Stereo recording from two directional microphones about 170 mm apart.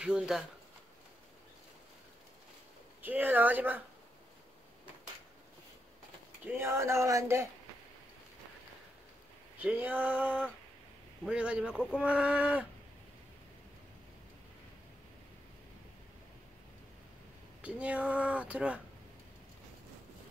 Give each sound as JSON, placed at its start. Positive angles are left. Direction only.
{"t": 0.0, "sound": "speech", "side_deg": -5}
{"t": 3.0, "sound": "speech", "side_deg": -10}
{"t": 6.4, "sound": "speech", "side_deg": -15}
{"t": 9.6, "sound": "speech", "side_deg": -10}
{"t": 17.6, "sound": "speech", "side_deg": -5}